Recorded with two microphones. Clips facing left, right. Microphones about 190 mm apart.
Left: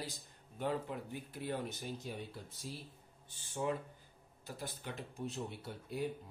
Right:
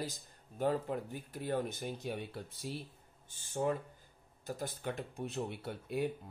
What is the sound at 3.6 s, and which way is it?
Speech, 45° right (ahead or behind).